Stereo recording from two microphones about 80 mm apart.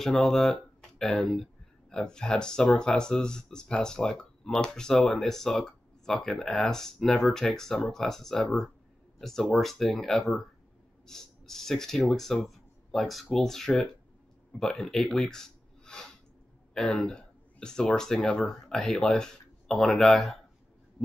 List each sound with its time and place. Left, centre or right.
0.0 s speech: centre